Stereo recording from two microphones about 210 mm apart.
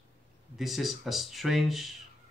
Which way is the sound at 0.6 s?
Centre (ahead or behind).